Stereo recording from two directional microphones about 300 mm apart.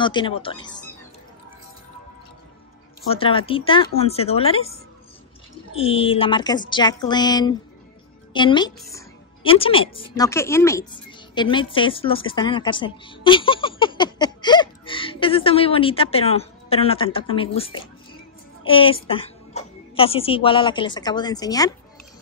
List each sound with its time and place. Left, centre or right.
0.0 s a woman's voice: centre
3.1 s speech: centre
5.8 s a woman's voice: centre